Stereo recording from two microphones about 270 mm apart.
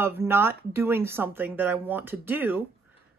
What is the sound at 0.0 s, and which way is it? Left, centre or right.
A woman's voice, centre.